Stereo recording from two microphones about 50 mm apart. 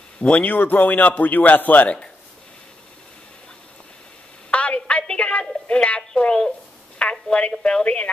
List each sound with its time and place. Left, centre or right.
0.2 s speech: left
4.5 s a sound: left
7.0 s a woman's voice: left